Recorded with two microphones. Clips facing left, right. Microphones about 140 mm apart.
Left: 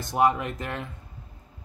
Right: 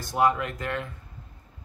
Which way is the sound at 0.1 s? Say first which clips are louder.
Left 1 dB; 20° left (ahead or behind).